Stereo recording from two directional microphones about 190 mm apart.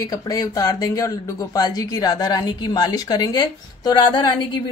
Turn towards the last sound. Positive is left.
turn(degrees=25)  # may be behind; listen again after turning